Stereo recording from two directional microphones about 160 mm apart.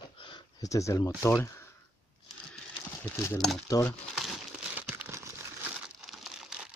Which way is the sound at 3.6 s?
20° left (ahead or behind).